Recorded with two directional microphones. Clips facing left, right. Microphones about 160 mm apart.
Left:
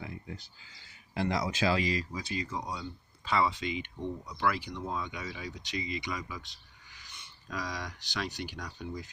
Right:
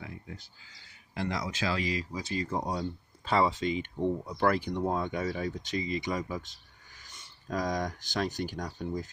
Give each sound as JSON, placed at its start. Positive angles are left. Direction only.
{"t": 0.0, "sound": "a sound", "side_deg": 5}
{"t": 1.1, "sound": "speech", "side_deg": 5}
{"t": 2.1, "sound": "speech", "side_deg": -40}
{"t": 3.3, "sound": "speech", "side_deg": -40}